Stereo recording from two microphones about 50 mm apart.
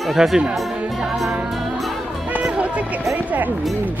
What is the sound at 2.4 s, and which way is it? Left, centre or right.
Music, right.